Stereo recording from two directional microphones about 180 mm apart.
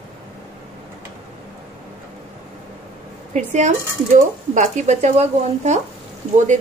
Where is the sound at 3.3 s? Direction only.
40° right (ahead or behind).